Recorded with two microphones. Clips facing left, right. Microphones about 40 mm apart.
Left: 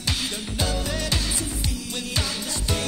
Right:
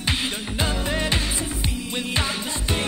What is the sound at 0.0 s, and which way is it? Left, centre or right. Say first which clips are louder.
Music: right 3 dB; right.